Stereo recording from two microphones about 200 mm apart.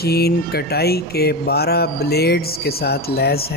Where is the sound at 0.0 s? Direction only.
50° left (ahead or behind).